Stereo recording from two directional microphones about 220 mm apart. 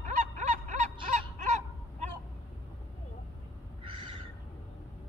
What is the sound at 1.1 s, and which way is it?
Honk, 35° right (ahead or behind).